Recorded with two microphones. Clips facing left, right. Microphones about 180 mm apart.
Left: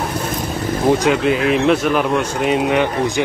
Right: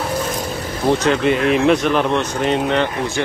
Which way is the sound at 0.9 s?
10° left (ahead or behind).